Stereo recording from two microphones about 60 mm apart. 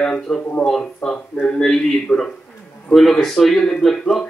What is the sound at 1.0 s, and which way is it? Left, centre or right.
A man's voice, centre.